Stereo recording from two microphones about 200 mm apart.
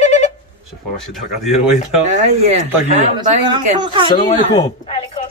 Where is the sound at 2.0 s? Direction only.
35° right (ahead or behind).